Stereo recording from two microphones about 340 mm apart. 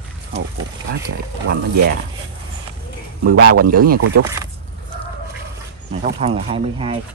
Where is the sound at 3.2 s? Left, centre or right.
Right.